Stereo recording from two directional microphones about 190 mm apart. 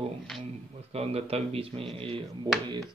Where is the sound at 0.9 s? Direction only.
30° right (ahead or behind).